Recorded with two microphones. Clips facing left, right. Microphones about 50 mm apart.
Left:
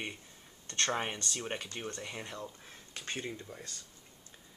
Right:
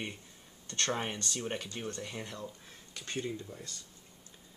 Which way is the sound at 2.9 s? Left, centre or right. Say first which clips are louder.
Right 2 dB; left.